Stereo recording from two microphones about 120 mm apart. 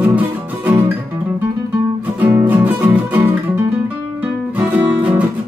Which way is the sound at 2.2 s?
15° right (ahead or behind).